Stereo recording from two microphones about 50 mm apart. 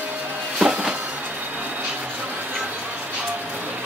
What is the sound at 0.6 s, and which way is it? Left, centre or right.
Music, centre.